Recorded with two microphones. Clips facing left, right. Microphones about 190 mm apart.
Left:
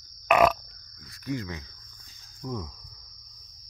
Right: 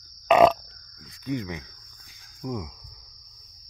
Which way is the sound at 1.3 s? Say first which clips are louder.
Right 2 dB; 20° right (ahead or behind).